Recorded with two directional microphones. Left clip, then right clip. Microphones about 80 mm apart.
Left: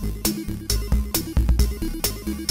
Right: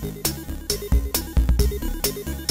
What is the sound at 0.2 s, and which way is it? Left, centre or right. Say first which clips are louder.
Music: left 5 dB; centre.